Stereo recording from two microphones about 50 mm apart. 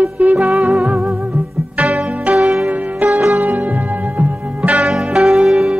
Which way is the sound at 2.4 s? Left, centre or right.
Centre.